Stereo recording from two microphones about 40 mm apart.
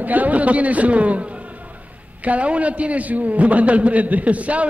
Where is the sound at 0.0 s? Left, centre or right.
Right.